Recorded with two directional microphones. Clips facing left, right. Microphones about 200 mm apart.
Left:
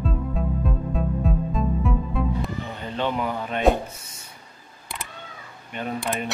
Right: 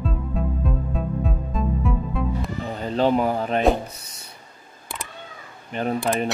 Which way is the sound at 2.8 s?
40° right (ahead or behind).